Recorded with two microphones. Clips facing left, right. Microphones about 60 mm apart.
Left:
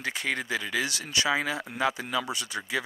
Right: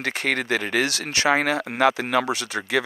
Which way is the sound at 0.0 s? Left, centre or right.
Right.